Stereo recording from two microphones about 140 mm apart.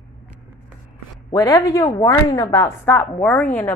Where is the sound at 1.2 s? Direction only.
25° left (ahead or behind).